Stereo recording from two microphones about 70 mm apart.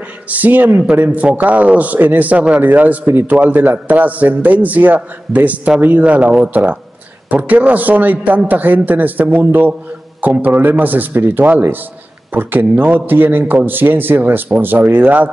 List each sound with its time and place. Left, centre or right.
0.3 s a man's voice: right